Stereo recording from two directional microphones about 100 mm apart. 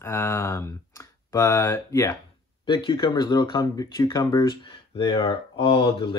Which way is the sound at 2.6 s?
50° left (ahead or behind).